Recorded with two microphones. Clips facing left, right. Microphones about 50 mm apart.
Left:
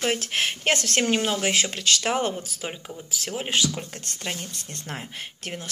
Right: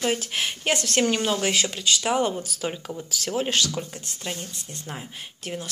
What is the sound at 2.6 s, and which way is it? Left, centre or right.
A woman's voice, left.